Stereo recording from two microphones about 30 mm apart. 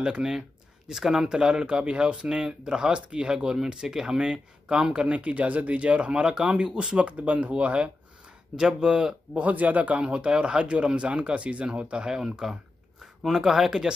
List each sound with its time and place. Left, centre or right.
0.8 s speech: centre
1.3 s speech: right
2.2 s speech: right
5.0 s speech: right
6.1 s speech: right
7.1 s speech: right
8.5 s speech: right
9.3 s speech: right
10.0 s speech: right
12.4 s speech: centre